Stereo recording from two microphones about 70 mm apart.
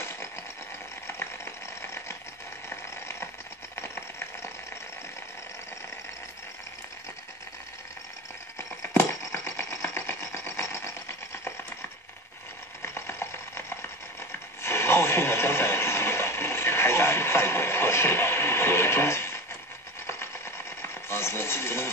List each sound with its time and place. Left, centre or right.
1.0 s a sound: left
3.7 s typewriter: left
8.5 s typewriter: left
12.8 s chopping: left
14.6 s a sound: left
20.1 s sewing machine: left